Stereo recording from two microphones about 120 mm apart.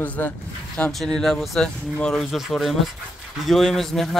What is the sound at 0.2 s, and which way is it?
Speech, 20° left (ahead or behind).